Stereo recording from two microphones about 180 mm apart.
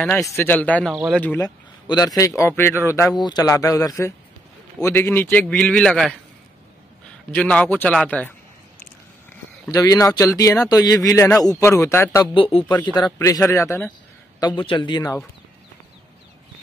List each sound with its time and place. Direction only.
0.0 s a man's voice: centre (ahead or behind)
1.4 s a sound: 20° left (ahead or behind)
2.1 s a man's voice: 15° left (ahead or behind)
7.3 s a man's voice: 5° left (ahead or behind)
9.7 s a man's voice: 20° left (ahead or behind)
12.4 s a man's voice: 30° left (ahead or behind)
14.6 s speech: 30° left (ahead or behind)